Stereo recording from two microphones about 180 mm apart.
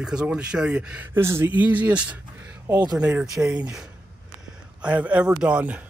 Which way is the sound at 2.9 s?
5° right (ahead or behind).